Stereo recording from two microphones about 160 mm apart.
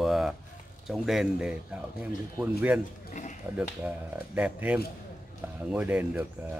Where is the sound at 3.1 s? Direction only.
50° left (ahead or behind).